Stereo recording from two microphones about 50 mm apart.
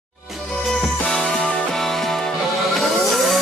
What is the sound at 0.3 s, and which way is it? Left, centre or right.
Music, centre.